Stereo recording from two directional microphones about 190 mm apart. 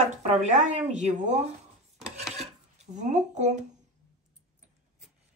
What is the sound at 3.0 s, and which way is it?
Speech, 40° right (ahead or behind).